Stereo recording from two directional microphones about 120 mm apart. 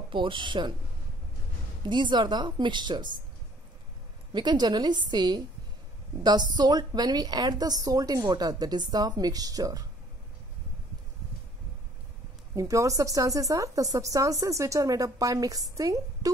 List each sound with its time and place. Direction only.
0.1 s a woman's voice: 45° right (ahead or behind)
1.9 s a woman's voice: 40° right (ahead or behind)
4.3 s a woman's voice: 40° right (ahead or behind)
12.5 s a woman's voice: 30° right (ahead or behind)